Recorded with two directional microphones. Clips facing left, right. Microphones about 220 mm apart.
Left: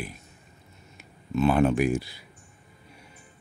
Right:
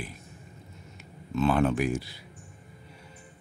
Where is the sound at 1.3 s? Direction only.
15° left (ahead or behind).